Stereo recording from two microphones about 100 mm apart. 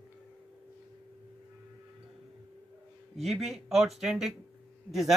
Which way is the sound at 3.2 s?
Centre (ahead or behind).